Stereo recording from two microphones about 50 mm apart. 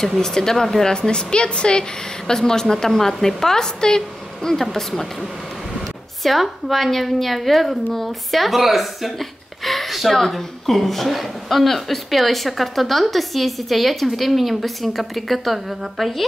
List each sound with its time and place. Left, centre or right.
0.0 s a woman's voice: centre
6.2 s speech: centre